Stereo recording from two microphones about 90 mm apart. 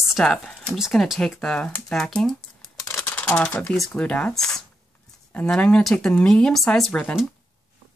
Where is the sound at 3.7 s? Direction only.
5° left (ahead or behind).